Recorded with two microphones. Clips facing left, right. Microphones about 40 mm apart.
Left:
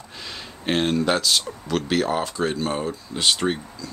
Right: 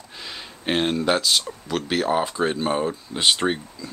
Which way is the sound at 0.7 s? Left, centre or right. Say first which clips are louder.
Even; centre.